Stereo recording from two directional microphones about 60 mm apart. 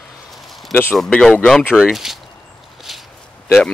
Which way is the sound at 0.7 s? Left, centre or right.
Left.